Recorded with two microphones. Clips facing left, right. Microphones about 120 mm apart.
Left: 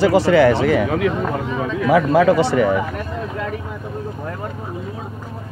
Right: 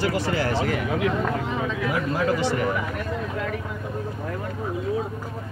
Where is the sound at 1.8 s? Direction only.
90° left.